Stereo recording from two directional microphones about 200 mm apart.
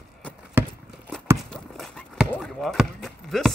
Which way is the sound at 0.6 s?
10° right (ahead or behind).